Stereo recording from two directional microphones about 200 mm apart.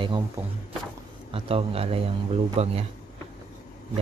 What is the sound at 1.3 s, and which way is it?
Speech, 30° right (ahead or behind).